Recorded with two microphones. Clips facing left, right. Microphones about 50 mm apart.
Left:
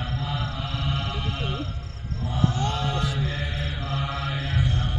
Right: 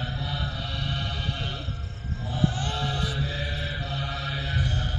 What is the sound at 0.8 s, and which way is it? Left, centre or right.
Music, centre.